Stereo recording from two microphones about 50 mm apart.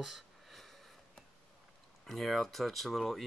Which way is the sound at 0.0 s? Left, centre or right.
Centre.